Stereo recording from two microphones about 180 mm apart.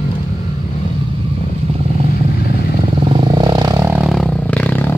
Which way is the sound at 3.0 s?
25° right (ahead or behind).